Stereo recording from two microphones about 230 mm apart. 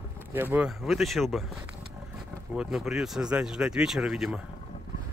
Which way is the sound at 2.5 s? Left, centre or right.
Centre.